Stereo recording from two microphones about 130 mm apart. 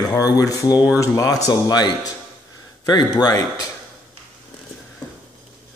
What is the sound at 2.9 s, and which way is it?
Speech, 30° left (ahead or behind).